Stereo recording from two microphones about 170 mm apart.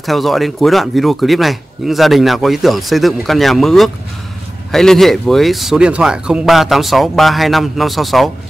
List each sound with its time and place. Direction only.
0.0 s speech: centre (ahead or behind)